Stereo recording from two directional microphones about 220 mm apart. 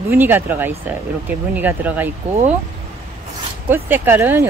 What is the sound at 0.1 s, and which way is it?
Speech, 10° right (ahead or behind).